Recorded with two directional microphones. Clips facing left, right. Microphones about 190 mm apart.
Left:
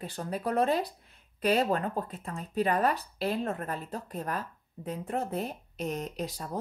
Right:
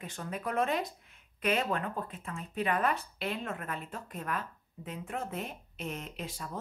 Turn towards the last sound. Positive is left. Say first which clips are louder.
# left 6 dB
turn(degrees=40)  # may be behind; listen again after turning